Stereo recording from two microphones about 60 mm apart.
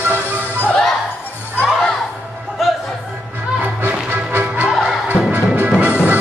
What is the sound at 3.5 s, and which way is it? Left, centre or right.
Music, right.